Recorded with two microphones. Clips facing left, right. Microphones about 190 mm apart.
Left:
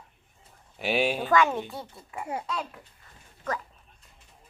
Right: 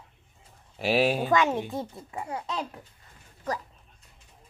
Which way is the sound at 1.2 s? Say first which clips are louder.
Even; 20° right (ahead or behind).